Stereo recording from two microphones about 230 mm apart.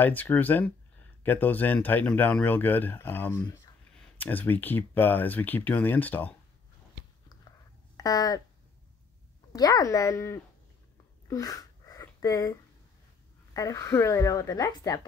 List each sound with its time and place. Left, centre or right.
0.0 s speech: centre
8.0 s speech: centre
9.5 s speech: centre
11.2 s a sound: centre
13.5 s speech: centre